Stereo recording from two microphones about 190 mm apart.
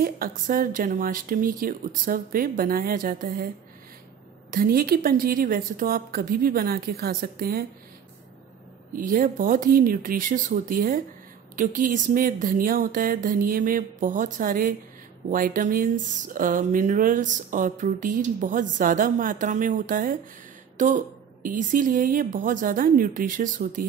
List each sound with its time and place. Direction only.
0.0 s speech: 50° right (ahead or behind)
4.5 s speech: 50° right (ahead or behind)
8.9 s speech: 45° right (ahead or behind)